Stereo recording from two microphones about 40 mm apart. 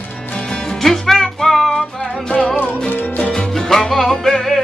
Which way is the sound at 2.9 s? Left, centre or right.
Left.